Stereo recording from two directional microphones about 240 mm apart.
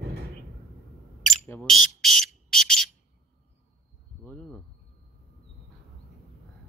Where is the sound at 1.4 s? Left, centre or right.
Centre.